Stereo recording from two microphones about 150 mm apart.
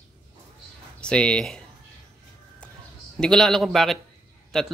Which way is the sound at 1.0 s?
5° left (ahead or behind).